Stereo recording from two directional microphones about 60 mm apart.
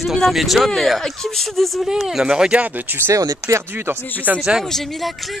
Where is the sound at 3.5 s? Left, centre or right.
Right.